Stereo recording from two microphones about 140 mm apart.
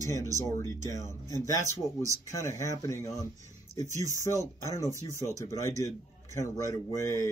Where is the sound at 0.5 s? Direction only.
20° left (ahead or behind).